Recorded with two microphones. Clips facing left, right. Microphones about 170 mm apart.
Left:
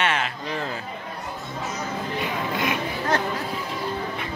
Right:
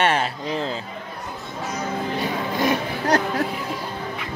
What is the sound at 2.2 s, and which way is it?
Music, 35° right (ahead or behind).